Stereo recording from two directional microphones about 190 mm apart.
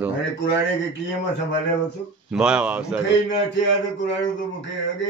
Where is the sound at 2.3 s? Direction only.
5° right (ahead or behind).